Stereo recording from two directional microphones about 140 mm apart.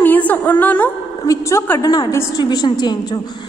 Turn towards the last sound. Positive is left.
turn(degrees=30)  # may be behind; listen again after turning